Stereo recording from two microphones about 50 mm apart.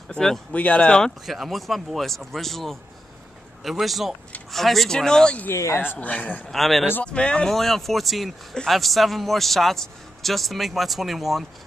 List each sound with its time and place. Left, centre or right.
0.5 s speech: left
1.2 s a man's voice: centre
5.5 s speech: left
5.9 s speech: left
6.5 s a man's voice: centre
7.1 s speech: centre
7.5 s a man's voice: centre